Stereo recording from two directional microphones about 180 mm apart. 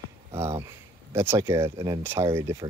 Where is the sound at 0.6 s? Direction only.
15° right (ahead or behind).